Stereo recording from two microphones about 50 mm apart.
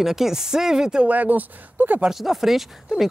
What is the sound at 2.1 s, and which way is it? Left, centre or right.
Speech, centre.